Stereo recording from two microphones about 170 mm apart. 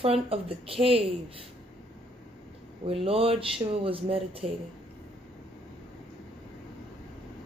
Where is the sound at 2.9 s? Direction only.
35° right (ahead or behind).